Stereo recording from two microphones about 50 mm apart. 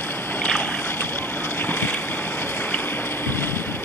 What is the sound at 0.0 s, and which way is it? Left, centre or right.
Boat, left.